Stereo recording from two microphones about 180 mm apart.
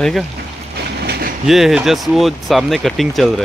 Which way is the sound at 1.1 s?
60° right (ahead or behind).